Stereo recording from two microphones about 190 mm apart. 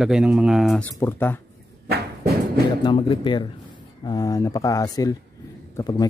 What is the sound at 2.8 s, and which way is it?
Speech, 25° left (ahead or behind).